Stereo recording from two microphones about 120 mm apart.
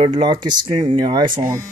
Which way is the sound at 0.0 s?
35° right (ahead or behind).